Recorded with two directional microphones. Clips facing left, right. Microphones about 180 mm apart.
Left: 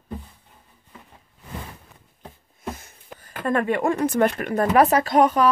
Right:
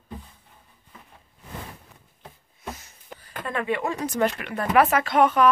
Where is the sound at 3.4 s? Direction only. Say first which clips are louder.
Left 6 dB; 45° left (ahead or behind).